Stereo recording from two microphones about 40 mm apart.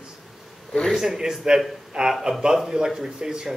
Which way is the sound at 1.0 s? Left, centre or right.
Centre.